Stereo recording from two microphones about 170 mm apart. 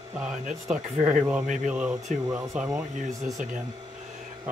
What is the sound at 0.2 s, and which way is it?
Speech, 5° right (ahead or behind).